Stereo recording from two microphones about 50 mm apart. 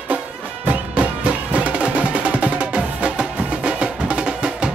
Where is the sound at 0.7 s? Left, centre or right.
Right.